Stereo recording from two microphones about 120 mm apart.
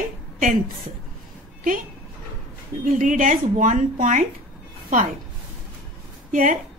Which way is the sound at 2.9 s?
90° right.